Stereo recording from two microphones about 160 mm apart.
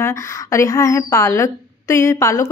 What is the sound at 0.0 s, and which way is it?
Speech, 20° left (ahead or behind).